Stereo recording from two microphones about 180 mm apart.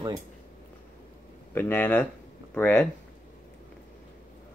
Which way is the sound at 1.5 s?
10° left (ahead or behind).